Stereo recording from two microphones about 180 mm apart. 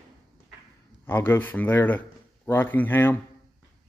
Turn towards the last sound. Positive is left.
turn(degrees=10)  # may be behind; listen again after turning